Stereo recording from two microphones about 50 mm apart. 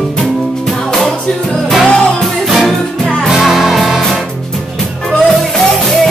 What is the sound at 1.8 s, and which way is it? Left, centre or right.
Music, centre.